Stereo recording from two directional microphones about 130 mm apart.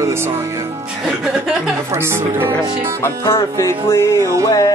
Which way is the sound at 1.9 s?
20° right (ahead or behind).